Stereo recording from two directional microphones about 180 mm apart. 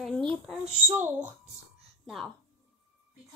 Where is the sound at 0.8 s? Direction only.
10° right (ahead or behind).